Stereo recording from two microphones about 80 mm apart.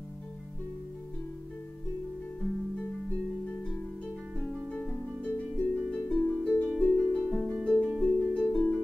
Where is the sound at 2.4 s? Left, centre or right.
Centre.